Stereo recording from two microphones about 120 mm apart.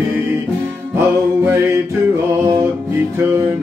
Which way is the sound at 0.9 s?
20° right (ahead or behind).